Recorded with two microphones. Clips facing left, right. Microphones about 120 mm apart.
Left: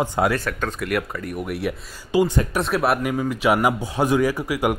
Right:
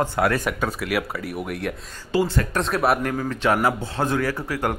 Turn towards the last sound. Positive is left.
turn(degrees=10)  # may be behind; listen again after turning